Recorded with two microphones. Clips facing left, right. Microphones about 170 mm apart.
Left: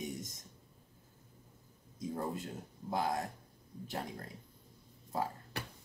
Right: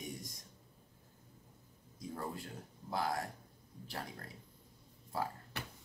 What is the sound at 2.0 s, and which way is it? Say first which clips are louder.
Speech: left 5 dB; 20° left (ahead or behind).